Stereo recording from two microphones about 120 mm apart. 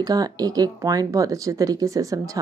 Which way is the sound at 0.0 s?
30° right (ahead or behind).